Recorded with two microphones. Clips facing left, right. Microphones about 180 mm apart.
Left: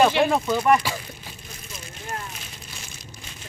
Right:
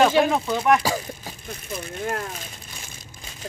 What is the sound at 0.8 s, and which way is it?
Speech, 40° right (ahead or behind).